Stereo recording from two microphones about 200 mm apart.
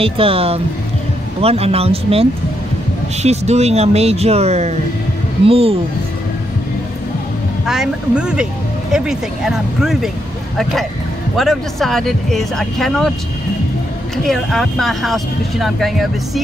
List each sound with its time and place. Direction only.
0.0 s speech: 30° right (ahead or behind)
7.6 s speech: centre (ahead or behind)
14.1 s speech: centre (ahead or behind)